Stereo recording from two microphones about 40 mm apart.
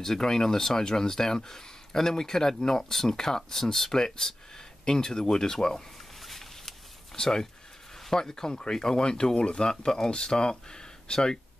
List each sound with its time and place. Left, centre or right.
0.0 s speech: centre
6.2 s a sound: centre
7.2 s speech: centre